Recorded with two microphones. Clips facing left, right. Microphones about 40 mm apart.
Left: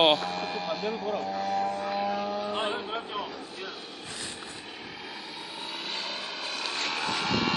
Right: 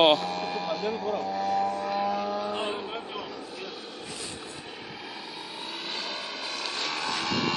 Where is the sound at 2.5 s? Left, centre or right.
Left.